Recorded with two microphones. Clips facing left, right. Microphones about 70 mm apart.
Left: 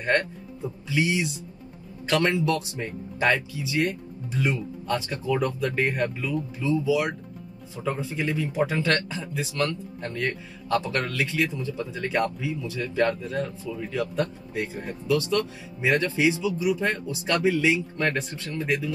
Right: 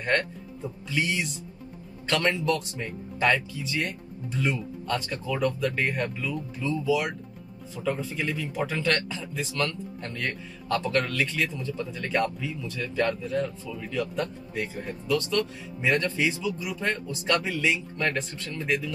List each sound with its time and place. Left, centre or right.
0.0 s speech: left